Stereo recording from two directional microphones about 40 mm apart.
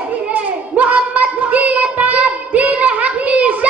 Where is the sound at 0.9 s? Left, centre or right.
Right.